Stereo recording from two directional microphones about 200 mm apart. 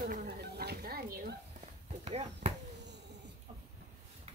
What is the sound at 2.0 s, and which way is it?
Speech, 30° right (ahead or behind).